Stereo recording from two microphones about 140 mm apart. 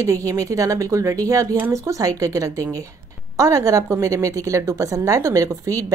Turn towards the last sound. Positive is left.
turn(degrees=-25)  # may be behind; listen again after turning